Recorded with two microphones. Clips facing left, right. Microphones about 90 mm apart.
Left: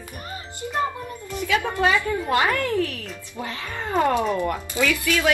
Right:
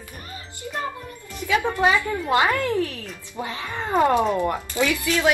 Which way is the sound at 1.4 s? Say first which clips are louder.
Right 1 dB; 20° right (ahead or behind).